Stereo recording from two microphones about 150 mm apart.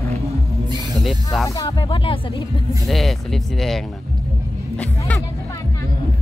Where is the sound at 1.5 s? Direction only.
30° left (ahead or behind).